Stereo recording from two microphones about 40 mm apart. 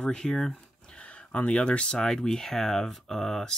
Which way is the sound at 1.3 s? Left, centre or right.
Left.